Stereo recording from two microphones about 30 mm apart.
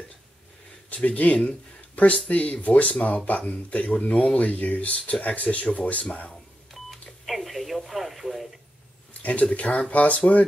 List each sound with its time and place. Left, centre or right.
0.8 s speech: left
4.4 s speech: left
6.7 s telephone dialing: centre
7.9 s radio: centre
9.2 s speech: left